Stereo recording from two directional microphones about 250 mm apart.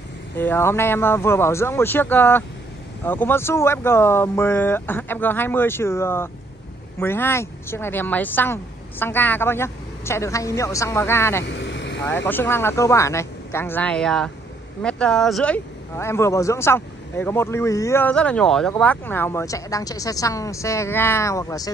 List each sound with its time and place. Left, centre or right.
0.4 s speech: centre
11.4 s vehicle: left
12.3 s speech: centre